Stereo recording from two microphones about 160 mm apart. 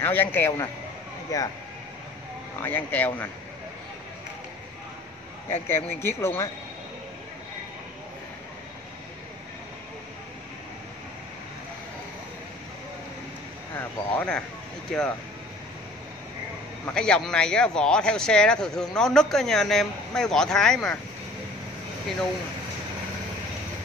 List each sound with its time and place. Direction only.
0.0 s a man's voice: 10° left (ahead or behind)
2.6 s a man's voice: 10° left (ahead or behind)
5.5 s a man's voice: 15° left (ahead or behind)
13.7 s a man's voice: 10° left (ahead or behind)
16.8 s speech: 5° left (ahead or behind)